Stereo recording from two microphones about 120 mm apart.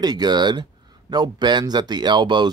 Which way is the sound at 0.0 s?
35° right (ahead or behind).